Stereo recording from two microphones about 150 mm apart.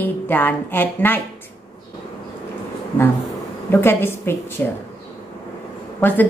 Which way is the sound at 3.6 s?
15° left (ahead or behind).